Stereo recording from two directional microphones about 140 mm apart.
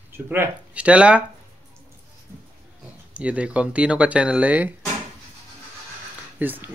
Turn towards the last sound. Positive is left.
turn(degrees=-15)  # may be behind; listen again after turning